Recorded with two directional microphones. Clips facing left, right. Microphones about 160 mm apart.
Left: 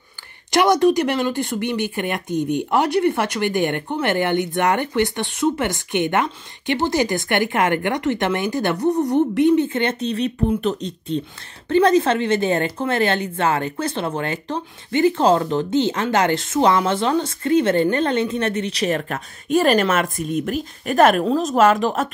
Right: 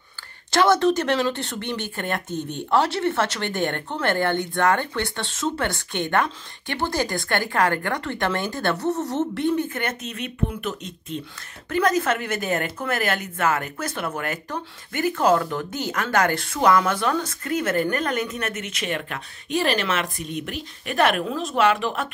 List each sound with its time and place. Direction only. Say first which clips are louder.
0.5 s speech: left 3 dB; 15° left (ahead or behind); by 22.1 s 40° left (ahead or behind)